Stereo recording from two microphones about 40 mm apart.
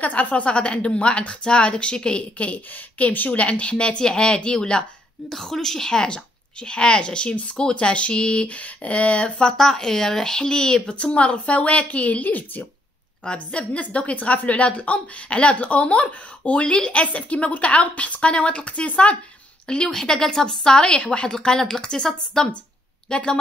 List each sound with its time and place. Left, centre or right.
0.0 s a woman's voice: left
3.1 s a woman's voice: left
3.3 s a woman's voice: left
11.0 s a woman's voice: left
13.2 s a woman's voice: left
19.9 s a woman's voice: centre
21.4 s speech: centre